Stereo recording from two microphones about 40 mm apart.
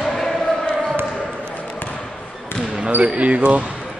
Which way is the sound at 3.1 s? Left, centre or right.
Right.